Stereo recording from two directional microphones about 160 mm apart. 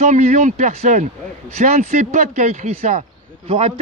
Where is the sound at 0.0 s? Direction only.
50° right (ahead or behind).